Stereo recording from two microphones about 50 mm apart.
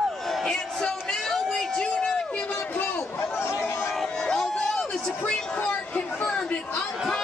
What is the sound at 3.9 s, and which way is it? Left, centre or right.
Crowd, centre.